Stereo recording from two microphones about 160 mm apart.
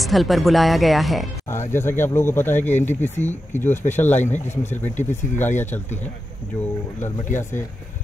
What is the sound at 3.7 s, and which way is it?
Speech, 50° left (ahead or behind).